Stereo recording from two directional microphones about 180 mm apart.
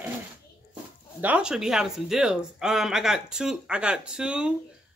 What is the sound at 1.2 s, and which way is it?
Speech, 5° right (ahead or behind).